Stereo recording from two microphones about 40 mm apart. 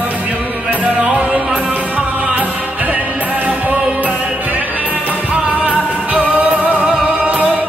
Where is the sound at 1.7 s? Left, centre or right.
Right.